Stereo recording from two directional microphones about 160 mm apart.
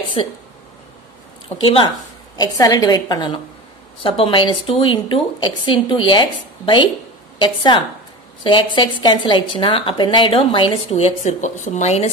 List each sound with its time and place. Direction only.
0.2 s a woman's voice: 35° left (ahead or behind)
1.6 s a woman's voice: 35° left (ahead or behind)